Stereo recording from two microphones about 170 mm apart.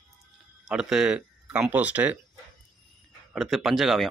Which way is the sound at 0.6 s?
5° right (ahead or behind).